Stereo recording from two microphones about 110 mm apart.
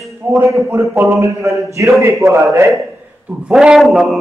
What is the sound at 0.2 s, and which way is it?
A man's voice, 25° right (ahead or behind).